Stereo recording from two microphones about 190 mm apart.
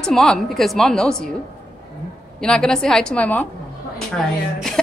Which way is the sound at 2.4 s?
5° left (ahead or behind).